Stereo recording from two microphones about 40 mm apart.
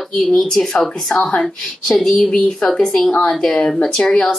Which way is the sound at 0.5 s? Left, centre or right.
Centre.